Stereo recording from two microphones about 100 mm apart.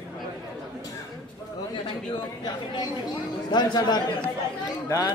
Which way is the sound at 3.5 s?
45° left (ahead or behind).